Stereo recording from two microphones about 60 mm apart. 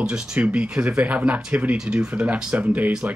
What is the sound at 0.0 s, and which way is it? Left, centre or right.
Speech, centre.